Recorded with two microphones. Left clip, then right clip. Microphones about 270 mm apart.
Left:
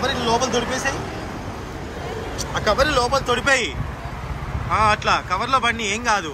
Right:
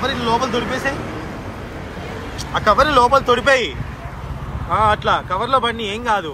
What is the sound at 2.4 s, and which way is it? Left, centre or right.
Speech, centre.